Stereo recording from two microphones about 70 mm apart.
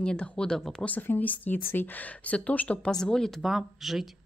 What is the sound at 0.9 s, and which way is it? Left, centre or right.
Speech, left.